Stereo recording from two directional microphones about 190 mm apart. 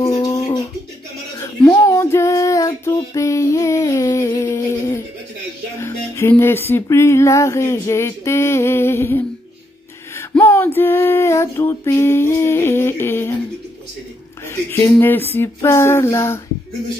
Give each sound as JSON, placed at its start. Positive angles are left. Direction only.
{"t": 0.0, "sound": "a sound", "side_deg": 20}
{"t": 5.8, "sound": "music", "side_deg": 15}
{"t": 14.5, "sound": "music", "side_deg": 15}